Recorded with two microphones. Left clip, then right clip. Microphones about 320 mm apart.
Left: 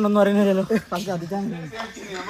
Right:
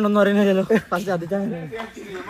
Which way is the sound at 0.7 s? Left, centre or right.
Centre.